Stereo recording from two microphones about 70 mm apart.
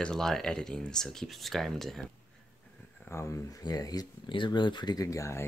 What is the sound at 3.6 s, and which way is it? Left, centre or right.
Speech, left.